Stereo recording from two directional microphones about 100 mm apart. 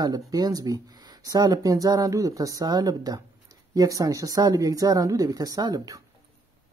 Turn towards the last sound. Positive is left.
turn(degrees=-40)  # may be behind; listen again after turning